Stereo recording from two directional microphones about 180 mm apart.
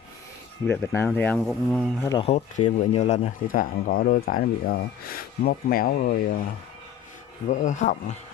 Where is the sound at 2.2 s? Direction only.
35° left (ahead or behind); by 6.4 s 55° left (ahead or behind).